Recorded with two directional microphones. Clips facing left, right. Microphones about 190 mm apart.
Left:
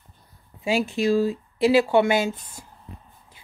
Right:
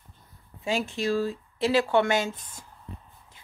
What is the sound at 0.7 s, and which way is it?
Speech, 15° left (ahead or behind).